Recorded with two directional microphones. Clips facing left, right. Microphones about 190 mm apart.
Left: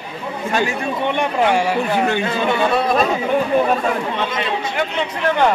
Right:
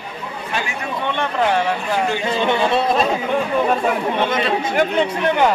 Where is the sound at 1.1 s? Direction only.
10° left (ahead or behind).